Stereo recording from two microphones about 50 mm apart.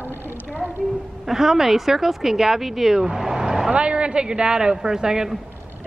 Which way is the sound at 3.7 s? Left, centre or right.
Right.